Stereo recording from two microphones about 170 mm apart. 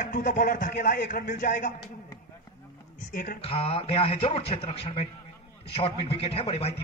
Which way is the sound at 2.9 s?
50° left (ahead or behind).